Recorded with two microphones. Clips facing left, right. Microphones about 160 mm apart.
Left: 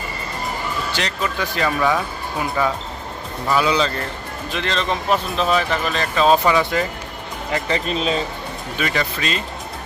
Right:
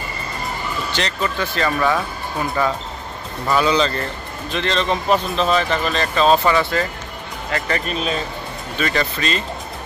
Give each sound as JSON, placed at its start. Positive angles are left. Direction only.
{"t": 0.9, "sound": "speech", "side_deg": 5}
{"t": 8.7, "sound": "speech", "side_deg": 5}